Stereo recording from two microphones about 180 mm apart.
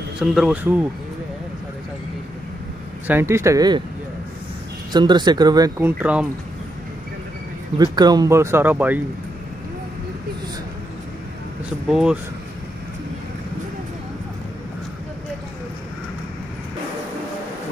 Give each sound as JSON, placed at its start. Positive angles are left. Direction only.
{"t": 0.2, "sound": "speech", "side_deg": 0}
{"t": 3.1, "sound": "speech", "side_deg": -15}
{"t": 4.9, "sound": "speech", "side_deg": -25}
{"t": 7.8, "sound": "speech", "side_deg": -25}
{"t": 11.9, "sound": "speech", "side_deg": -5}